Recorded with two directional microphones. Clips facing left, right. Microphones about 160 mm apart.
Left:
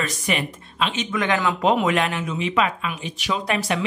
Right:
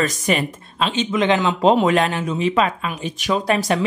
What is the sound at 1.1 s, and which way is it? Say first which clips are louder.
Speech: right 5 dB; 20° right (ahead or behind).